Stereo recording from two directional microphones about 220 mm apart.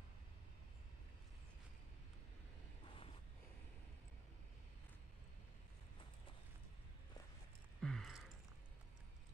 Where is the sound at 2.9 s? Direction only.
25° left (ahead or behind).